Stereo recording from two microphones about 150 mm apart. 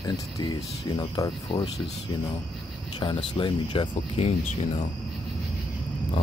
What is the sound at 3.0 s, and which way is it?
Speech, 35° left (ahead or behind).